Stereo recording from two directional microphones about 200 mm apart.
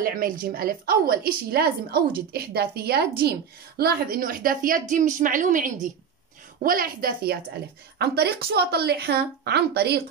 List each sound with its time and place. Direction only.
0.0 s a woman's voice: 45° right (ahead or behind)